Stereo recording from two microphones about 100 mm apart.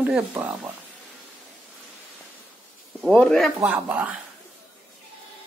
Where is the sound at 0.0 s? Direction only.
15° right (ahead or behind).